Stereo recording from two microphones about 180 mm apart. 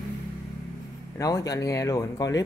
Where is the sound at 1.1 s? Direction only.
20° left (ahead or behind).